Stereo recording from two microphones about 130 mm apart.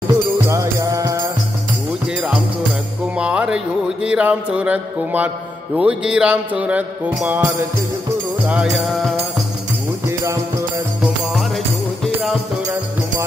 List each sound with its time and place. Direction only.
0.5 s music: 25° right (ahead or behind)
3.2 s music: 10° right (ahead or behind)
10.0 s music: 25° right (ahead or behind)
11.3 s music: centre (ahead or behind)